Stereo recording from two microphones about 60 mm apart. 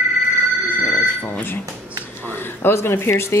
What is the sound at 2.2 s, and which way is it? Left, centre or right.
Speech, left.